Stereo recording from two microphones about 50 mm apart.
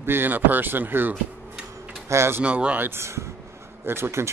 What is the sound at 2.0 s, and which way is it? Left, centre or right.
Speech, right.